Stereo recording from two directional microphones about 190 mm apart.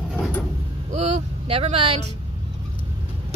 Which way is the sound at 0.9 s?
35° right (ahead or behind).